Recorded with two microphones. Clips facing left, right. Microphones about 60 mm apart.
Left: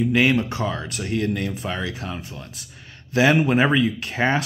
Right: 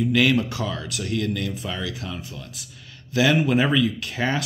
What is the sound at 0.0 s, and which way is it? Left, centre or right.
Speech, left.